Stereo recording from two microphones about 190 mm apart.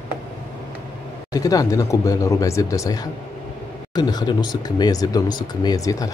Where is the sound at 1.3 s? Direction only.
20° left (ahead or behind).